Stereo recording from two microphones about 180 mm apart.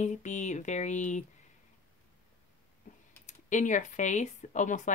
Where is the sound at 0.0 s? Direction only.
40° left (ahead or behind).